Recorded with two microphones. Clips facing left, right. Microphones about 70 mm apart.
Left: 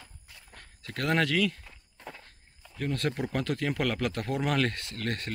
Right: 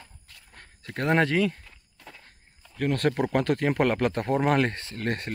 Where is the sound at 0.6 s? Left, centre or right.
Right.